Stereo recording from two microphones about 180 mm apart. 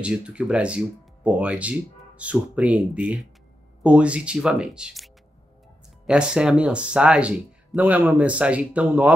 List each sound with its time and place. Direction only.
0.0 s speech: 5° right (ahead or behind)